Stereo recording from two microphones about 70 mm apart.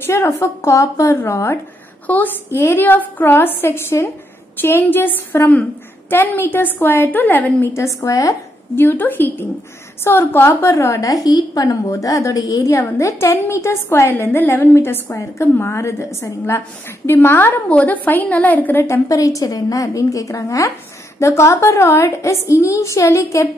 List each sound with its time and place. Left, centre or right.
0.0 s a woman's voice: left
0.3 s a woman's voice: left
1.1 s a woman's voice: left
2.0 s a woman's voice: left
7.7 s a woman's voice: left
8.7 s a woman's voice: left
11.0 s a woman's voice: left
17.6 s a woman's voice: left
19.0 s a woman's voice: left